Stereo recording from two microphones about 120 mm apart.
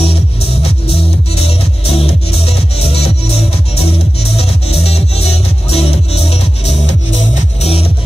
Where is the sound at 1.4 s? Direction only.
55° left (ahead or behind).